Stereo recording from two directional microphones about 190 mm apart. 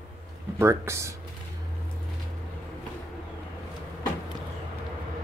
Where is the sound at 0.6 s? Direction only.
15° right (ahead or behind).